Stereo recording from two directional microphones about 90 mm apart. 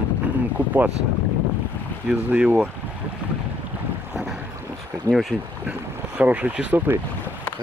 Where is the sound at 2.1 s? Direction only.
20° right (ahead or behind).